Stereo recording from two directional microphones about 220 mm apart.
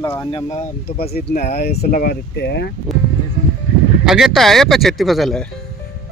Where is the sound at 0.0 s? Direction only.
10° left (ahead or behind).